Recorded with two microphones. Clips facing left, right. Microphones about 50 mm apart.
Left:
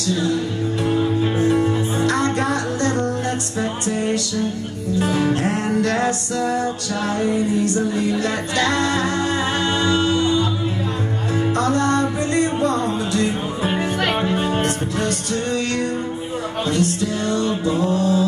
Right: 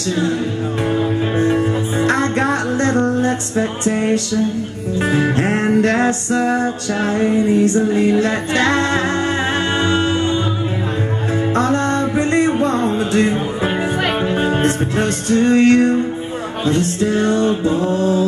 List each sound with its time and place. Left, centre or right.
0.1 s music: right